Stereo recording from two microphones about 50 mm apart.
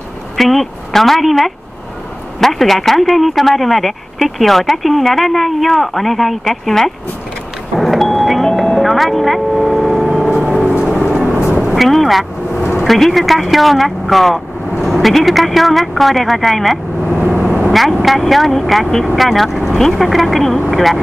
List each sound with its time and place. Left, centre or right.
0.4 s speech: centre
7.7 s doorbell: centre
10.4 s vehicle: centre
11.3 s vehicle: right
11.6 s vehicle: centre
12.7 s speech: centre